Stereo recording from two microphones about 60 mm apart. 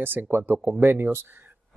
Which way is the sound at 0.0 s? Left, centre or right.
Right.